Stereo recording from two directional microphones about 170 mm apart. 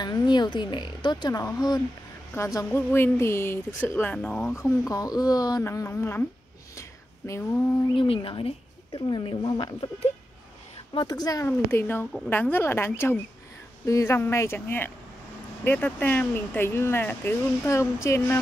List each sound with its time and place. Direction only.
0.0 s a woman's voice: 25° left (ahead or behind)
6.7 s a sound: 15° left (ahead or behind)
7.9 s speech: 30° left (ahead or behind)
11.0 s speech: 25° left (ahead or behind)
11.4 s a woman's voice: 10° left (ahead or behind)